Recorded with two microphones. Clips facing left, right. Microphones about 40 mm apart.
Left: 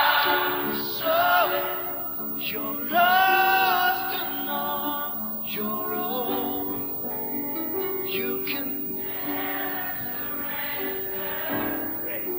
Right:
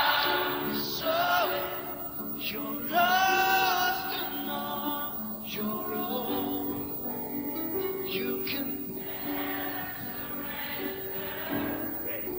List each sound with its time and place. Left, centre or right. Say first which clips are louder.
0.0 s music: left 5 dB; left
11.4 s music: left 3 dB; left